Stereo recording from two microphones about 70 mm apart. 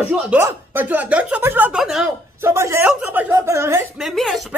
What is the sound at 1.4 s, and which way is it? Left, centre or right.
Speech, right.